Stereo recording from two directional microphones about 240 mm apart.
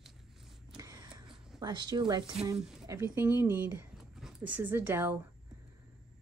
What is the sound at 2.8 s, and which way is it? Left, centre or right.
Speech, centre.